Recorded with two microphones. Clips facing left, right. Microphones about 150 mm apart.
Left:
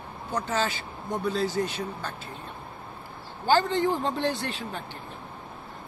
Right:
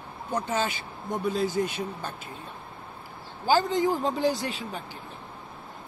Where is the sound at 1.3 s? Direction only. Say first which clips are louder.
Right 1 dB; 50° right (ahead or behind).